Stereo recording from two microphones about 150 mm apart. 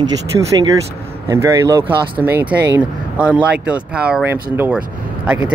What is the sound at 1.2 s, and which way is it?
Speech, 20° right (ahead or behind).